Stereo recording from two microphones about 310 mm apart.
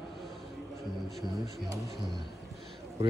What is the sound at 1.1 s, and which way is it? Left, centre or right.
Speech, centre.